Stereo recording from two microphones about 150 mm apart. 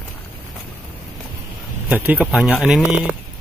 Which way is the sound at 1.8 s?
10° right (ahead or behind).